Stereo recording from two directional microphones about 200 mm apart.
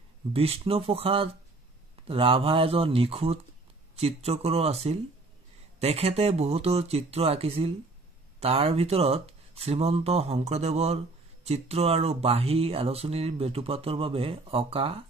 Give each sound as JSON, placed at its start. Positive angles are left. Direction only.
{"t": 0.3, "sound": "speech", "side_deg": -30}